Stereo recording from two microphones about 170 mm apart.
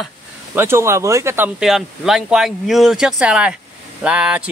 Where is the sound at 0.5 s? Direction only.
15° right (ahead or behind).